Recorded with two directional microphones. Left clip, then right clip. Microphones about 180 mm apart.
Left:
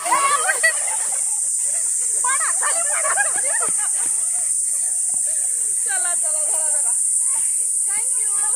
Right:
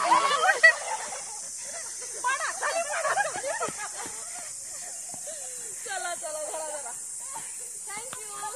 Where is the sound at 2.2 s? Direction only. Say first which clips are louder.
Left 4 dB; 15° right (ahead or behind).